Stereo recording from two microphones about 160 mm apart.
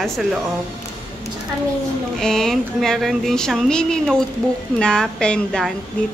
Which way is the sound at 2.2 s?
5° left (ahead or behind).